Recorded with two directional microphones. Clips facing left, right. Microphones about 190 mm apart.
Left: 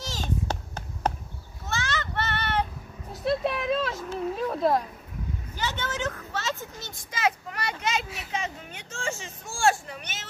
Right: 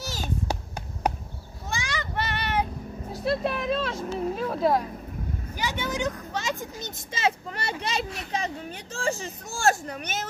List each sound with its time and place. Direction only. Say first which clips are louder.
0.0 s a sound: even; 10° right (ahead or behind)
1.7 s child singing: left 1 dB; 10° right (ahead or behind)
3.1 s speech: even; centre (ahead or behind)
7.1 s a child's voice: even; 25° right (ahead or behind); by 10.2 s 40° right (ahead or behind)